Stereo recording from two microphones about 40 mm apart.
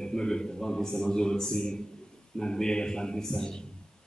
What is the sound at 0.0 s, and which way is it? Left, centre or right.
A man's voice, centre.